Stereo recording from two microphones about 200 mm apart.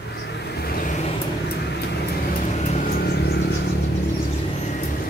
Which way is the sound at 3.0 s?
55° left (ahead or behind).